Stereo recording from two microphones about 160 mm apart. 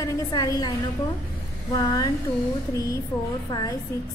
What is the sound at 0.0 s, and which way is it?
Speech, 20° left (ahead or behind).